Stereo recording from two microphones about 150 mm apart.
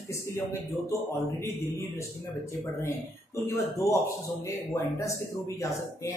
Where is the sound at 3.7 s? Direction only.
20° left (ahead or behind).